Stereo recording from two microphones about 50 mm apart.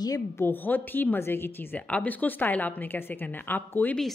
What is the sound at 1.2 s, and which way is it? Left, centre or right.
Speech, left.